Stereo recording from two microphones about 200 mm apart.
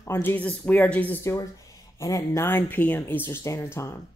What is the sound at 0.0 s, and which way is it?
Speech, 10° left (ahead or behind).